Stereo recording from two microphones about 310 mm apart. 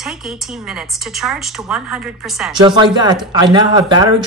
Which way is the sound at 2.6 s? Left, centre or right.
Centre.